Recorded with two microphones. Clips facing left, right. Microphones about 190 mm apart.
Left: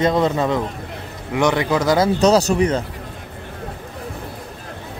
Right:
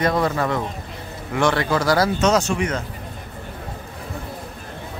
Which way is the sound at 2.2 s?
35° left (ahead or behind).